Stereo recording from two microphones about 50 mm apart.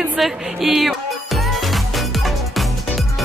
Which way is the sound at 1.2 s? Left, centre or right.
Centre.